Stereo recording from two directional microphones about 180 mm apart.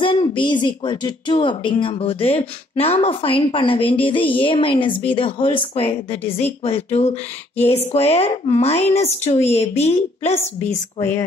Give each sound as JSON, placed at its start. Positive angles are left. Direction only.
{"t": 0.0, "sound": "speech", "side_deg": 30}